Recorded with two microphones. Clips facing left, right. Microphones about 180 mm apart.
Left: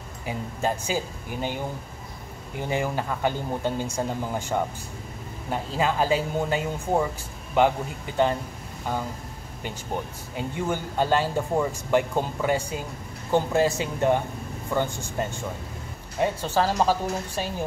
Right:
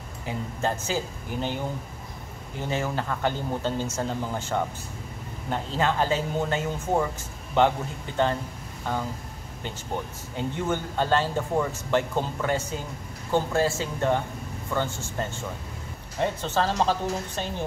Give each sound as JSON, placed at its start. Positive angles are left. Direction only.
{"t": 0.6, "sound": "speech", "side_deg": 10}
{"t": 2.6, "sound": "speech", "side_deg": 15}
{"t": 10.3, "sound": "speech", "side_deg": 10}